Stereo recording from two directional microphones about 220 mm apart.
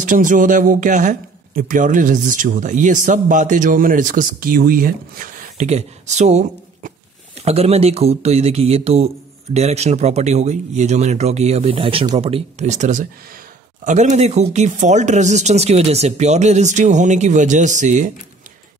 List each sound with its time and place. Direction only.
0.0 s a man's voice: 35° right (ahead or behind)